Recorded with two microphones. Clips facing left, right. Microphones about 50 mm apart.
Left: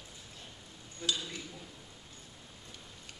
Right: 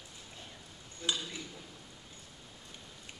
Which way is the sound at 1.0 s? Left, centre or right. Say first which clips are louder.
Even; centre.